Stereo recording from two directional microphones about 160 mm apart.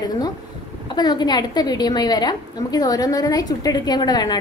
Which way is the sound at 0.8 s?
25° left (ahead or behind).